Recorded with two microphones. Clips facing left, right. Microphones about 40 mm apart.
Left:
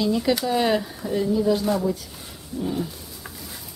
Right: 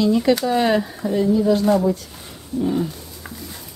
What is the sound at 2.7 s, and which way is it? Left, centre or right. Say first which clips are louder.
Roaring cats: right 5 dB; centre.